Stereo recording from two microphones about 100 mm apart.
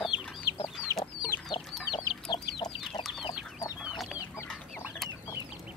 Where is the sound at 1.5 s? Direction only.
50° left (ahead or behind).